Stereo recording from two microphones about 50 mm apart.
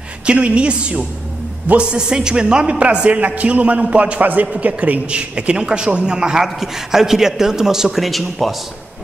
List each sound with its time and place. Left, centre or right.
0.3 s a man's voice: right; by 8.5 s centre